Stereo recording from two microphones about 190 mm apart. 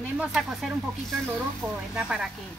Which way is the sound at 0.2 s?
5° right (ahead or behind).